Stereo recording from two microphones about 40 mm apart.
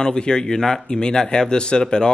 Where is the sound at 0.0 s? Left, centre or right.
Centre.